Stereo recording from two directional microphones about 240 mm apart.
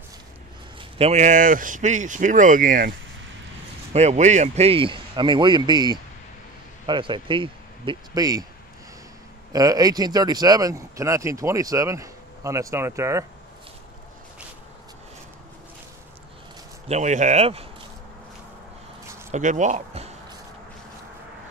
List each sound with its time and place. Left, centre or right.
0.7 s speech: right
3.9 s a man's voice: right
9.5 s speech: centre
16.8 s a man's voice: right
19.3 s speech: right